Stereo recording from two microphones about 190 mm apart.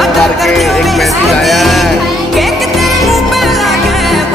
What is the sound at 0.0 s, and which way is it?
Music, centre (ahead or behind).